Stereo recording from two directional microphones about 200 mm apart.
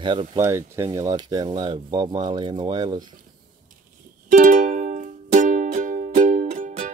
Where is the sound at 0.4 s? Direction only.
15° right (ahead or behind).